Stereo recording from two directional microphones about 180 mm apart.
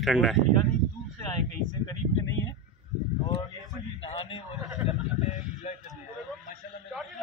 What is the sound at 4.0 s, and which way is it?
Speech, 30° left (ahead or behind).